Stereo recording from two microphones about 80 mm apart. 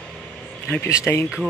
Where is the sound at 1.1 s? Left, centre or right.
Left.